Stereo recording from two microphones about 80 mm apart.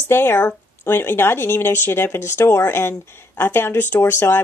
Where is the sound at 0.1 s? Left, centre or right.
Left.